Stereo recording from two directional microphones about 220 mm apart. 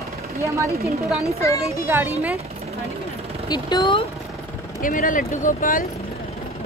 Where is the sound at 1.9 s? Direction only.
10° right (ahead or behind).